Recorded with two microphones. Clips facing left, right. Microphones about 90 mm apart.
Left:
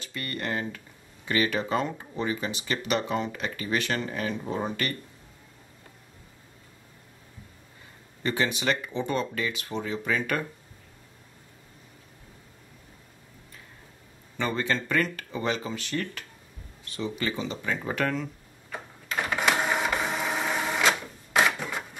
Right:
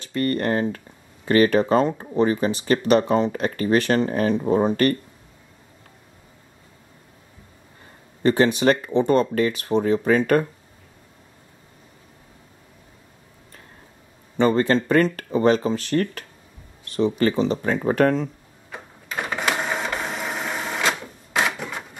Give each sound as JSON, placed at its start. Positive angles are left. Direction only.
{"t": 0.0, "sound": "speech", "side_deg": -40}
{"t": 8.2, "sound": "speech", "side_deg": -40}
{"t": 14.4, "sound": "speech", "side_deg": -40}
{"t": 18.7, "sound": "door", "side_deg": -15}
{"t": 19.3, "sound": "printer", "side_deg": 0}